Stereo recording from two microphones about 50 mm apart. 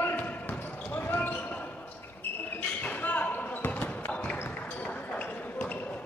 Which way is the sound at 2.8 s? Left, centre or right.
Left.